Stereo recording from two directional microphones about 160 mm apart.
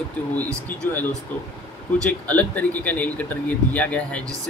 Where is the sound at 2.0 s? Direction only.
10° left (ahead or behind).